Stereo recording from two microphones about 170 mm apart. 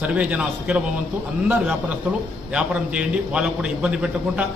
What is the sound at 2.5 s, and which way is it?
A man's voice, 5° right (ahead or behind).